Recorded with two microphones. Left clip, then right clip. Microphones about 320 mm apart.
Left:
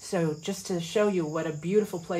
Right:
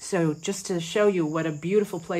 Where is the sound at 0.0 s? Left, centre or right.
Right.